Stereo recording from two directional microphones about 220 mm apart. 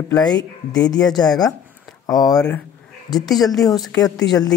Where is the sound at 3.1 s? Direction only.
Centre (ahead or behind).